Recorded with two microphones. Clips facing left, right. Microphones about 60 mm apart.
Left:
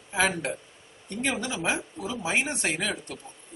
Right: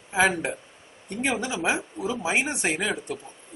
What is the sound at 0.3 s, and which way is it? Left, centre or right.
Speech, centre.